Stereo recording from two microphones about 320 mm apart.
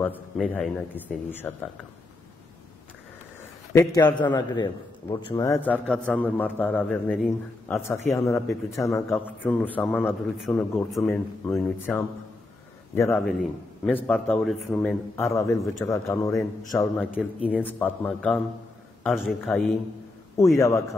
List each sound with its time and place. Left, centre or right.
0.0 s a man's voice: centre
3.7 s a man's voice: centre